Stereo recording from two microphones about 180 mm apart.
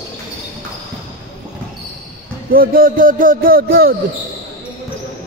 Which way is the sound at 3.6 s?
55° right (ahead or behind).